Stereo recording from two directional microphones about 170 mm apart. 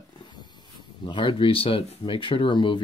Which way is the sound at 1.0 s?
30° left (ahead or behind).